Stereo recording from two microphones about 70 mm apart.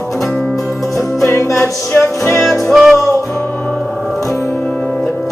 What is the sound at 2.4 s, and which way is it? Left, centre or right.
Music, centre.